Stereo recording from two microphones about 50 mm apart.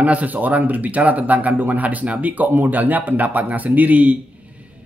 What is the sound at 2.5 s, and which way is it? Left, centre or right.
Speech, right.